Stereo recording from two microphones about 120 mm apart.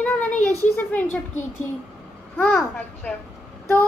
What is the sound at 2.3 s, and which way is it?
Speech, 20° left (ahead or behind).